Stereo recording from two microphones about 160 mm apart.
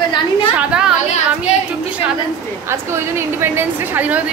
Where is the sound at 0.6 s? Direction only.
5° right (ahead or behind).